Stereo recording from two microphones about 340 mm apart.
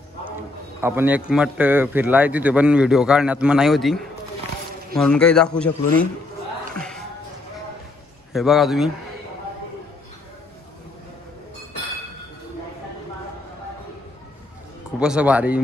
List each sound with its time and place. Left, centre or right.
0.7 s a man's voice: centre
8.3 s a man's voice: centre
15.0 s a man's voice: centre